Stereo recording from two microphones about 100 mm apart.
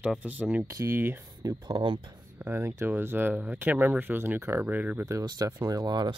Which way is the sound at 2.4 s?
20° right (ahead or behind).